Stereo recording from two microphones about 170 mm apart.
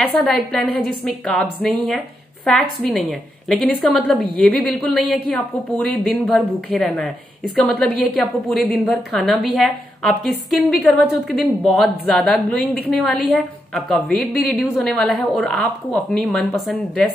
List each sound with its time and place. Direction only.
0.0 s a woman's voice: 5° left (ahead or behind)